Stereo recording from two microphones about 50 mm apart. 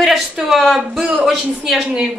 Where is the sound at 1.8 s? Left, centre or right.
Centre.